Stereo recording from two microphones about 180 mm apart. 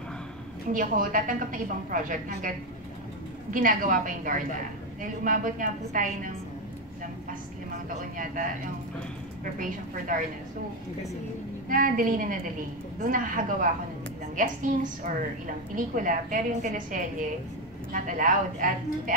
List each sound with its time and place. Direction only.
0.7 s a woman's voice: 50° right (ahead or behind)
3.5 s a woman's voice: 50° right (ahead or behind)
9.4 s a woman's voice: 50° right (ahead or behind)
11.7 s a woman's voice: 50° right (ahead or behind)